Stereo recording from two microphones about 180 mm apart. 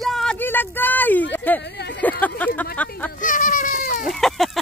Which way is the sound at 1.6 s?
65° left (ahead or behind).